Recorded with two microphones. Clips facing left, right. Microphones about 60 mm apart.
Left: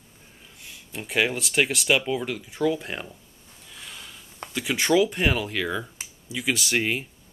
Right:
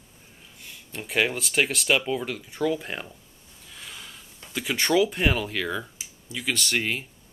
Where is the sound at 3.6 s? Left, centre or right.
Centre.